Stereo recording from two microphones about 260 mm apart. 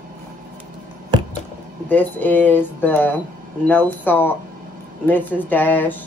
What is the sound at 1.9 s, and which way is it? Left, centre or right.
Speech, centre.